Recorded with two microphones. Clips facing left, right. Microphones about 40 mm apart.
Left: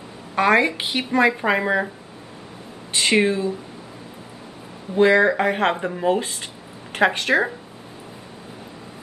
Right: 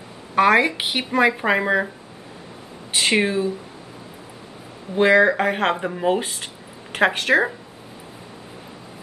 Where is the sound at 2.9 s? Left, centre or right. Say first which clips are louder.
Left 1 dB; centre.